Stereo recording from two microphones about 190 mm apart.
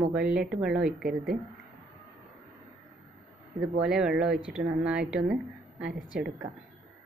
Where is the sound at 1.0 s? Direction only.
55° right (ahead or behind).